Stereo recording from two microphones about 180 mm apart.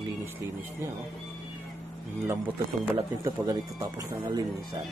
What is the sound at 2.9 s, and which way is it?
A man's voice, 20° right (ahead or behind).